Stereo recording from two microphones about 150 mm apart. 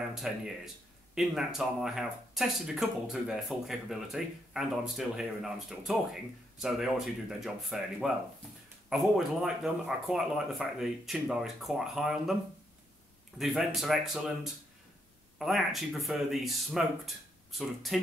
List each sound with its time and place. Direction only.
0.2 s speech: 5° right (ahead or behind)
13.4 s speech: centre (ahead or behind)